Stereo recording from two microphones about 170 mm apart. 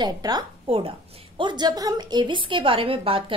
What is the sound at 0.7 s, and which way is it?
A woman's voice, 35° right (ahead or behind).